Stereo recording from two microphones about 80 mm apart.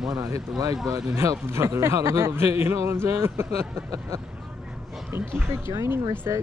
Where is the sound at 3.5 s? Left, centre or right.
Right.